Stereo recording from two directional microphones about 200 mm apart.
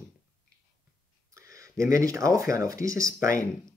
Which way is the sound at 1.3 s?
15° right (ahead or behind).